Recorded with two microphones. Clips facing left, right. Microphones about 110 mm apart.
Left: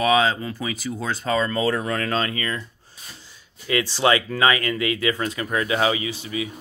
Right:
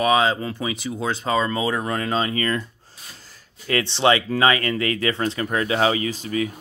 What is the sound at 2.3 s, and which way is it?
Speech, 45° right (ahead or behind).